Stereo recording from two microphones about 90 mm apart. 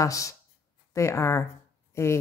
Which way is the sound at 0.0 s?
35° left (ahead or behind).